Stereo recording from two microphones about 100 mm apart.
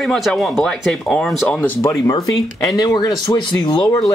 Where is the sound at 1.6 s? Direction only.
30° left (ahead or behind).